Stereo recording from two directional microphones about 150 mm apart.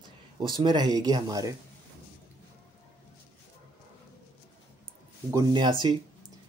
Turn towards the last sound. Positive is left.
turn(degrees=-30)  # may be behind; listen again after turning